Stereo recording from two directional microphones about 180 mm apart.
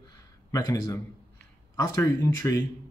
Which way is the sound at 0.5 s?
20° left (ahead or behind).